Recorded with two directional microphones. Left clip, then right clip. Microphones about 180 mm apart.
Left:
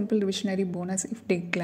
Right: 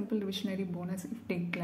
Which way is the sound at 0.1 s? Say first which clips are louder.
Left 10 dB; 30° left (ahead or behind).